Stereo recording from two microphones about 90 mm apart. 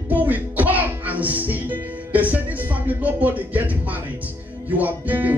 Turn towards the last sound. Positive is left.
turn(degrees=-20)  # may be behind; listen again after turning